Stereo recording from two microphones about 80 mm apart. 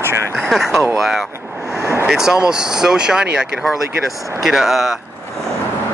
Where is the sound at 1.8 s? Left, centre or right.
Right.